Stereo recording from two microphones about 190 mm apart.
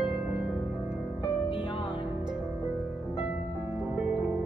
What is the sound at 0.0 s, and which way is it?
Music, 5° right (ahead or behind).